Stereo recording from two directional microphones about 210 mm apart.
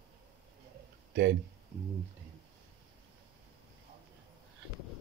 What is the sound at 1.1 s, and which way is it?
Speech, 55° right (ahead or behind).